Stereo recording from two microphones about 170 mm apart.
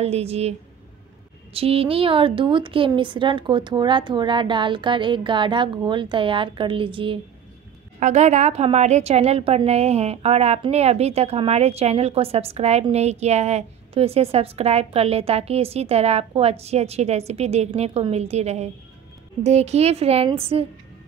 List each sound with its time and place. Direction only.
0.0 s a woman's voice: 35° right (ahead or behind)
8.0 s a woman's voice: 45° right (ahead or behind)